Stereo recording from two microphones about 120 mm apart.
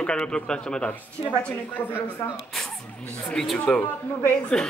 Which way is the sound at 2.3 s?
Centre (ahead or behind).